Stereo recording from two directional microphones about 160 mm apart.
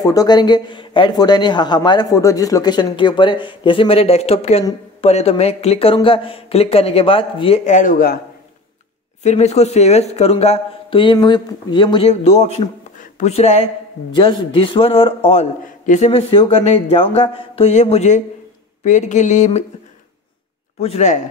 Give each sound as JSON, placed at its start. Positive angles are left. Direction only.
{"t": 0.0, "sound": "speech", "side_deg": 20}
{"t": 7.6, "sound": "speech", "side_deg": 55}
{"t": 9.2, "sound": "speech", "side_deg": 45}
{"t": 20.8, "sound": "speech", "side_deg": 45}